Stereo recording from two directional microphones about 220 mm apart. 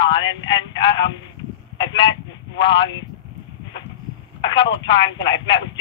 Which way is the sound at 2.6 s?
20° left (ahead or behind).